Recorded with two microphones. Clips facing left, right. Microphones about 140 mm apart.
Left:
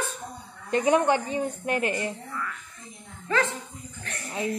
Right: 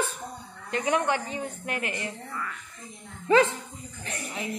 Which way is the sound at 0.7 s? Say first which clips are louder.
Left 4 dB; 25° left (ahead or behind).